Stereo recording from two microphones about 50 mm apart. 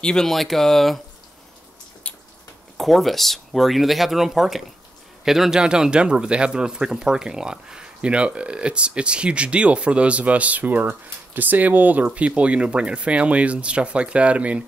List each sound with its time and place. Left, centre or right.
0.0 s speech: centre
0.3 s speech: centre
2.0 s a sound: left
2.8 s speech: centre; by 14.6 s right